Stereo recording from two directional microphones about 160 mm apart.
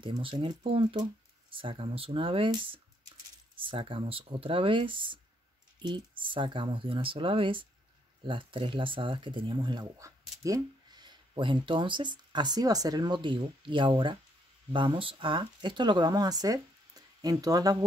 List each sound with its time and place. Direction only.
0.0 s speech: 35° right (ahead or behind)